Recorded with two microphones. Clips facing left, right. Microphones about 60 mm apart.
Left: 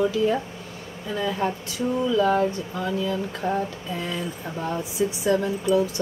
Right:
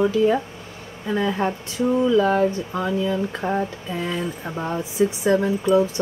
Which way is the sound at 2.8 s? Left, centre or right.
Centre.